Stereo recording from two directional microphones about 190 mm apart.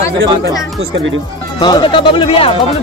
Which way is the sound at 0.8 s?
85° right.